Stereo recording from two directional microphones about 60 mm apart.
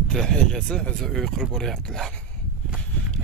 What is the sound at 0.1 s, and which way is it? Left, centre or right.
Speech, centre.